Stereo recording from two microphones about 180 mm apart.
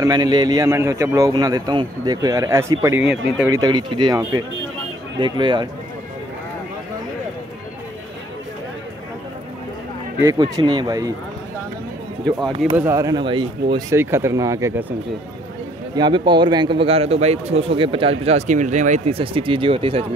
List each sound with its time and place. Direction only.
0.0 s a man's voice: 25° right (ahead or behind)
3.0 s speech: 5° right (ahead or behind)
3.5 s a man's voice: 25° right (ahead or behind)
10.1 s a man's voice: 20° right (ahead or behind)
12.3 s speech: centre (ahead or behind)
12.7 s speech: 15° right (ahead or behind)
16.0 s a man's voice: 25° right (ahead or behind)